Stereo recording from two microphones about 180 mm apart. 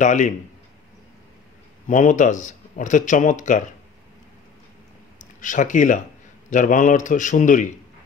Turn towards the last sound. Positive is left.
turn(degrees=45)  # may be behind; listen again after turning